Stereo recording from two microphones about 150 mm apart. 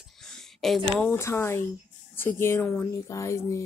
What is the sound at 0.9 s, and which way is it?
Speech, 15° left (ahead or behind).